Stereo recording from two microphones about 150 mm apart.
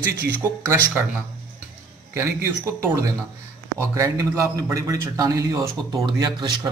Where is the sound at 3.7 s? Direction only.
20° right (ahead or behind).